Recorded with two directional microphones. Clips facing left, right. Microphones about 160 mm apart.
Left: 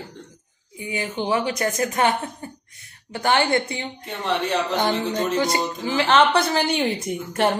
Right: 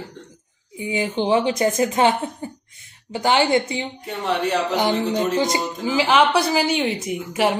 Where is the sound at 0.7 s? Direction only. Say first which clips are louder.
Right 5 dB; 20° right (ahead or behind).